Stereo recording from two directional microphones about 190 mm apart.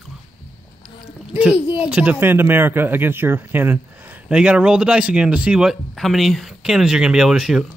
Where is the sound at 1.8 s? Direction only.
5° right (ahead or behind).